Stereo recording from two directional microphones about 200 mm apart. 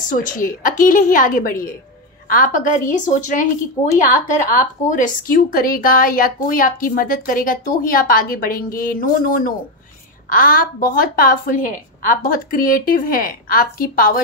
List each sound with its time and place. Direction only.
0.1 s a woman's voice: 40° left (ahead or behind)